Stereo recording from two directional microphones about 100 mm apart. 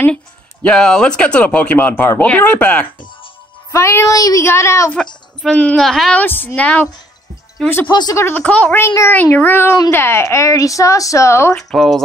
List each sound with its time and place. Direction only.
0.1 s speech: 10° left (ahead or behind)
3.7 s speech: 30° left (ahead or behind)
5.4 s a woman's voice: 10° left (ahead or behind)
6.1 s speech: 20° left (ahead or behind)
7.9 s speech: 45° left (ahead or behind)
8.2 s speech: 20° left (ahead or behind)
8.7 s a woman's voice: 25° left (ahead or behind)
11.5 s a woman's voice: 5° left (ahead or behind)